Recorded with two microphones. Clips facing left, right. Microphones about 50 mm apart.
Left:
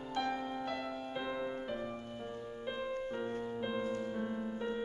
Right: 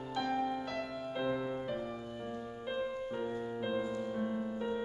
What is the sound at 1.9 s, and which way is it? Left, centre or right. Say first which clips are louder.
Music: right 1 dB; centre.